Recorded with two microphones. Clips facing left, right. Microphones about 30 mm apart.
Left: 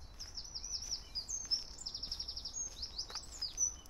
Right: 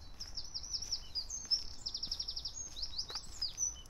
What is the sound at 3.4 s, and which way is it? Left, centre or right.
Bird, centre.